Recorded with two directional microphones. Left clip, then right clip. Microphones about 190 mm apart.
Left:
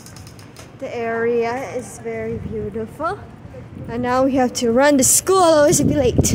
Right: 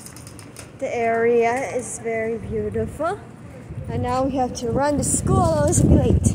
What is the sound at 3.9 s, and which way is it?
A woman's voice, 30° left (ahead or behind).